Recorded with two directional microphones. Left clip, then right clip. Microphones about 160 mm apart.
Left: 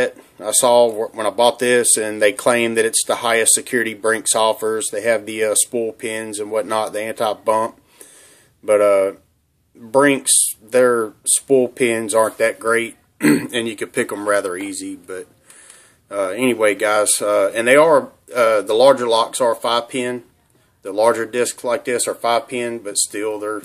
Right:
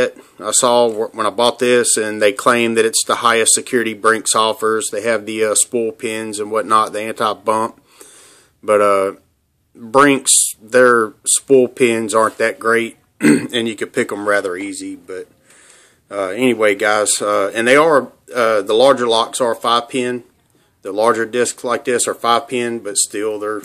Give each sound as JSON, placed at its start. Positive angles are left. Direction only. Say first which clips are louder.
{"t": 0.0, "sound": "speech", "louder": "right 2 dB", "side_deg": -20}
{"t": 16.1, "sound": "speech", "louder": "right 2 dB", "side_deg": -15}